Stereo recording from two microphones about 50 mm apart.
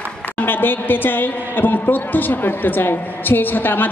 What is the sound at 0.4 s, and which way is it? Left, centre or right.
A woman's voice, left.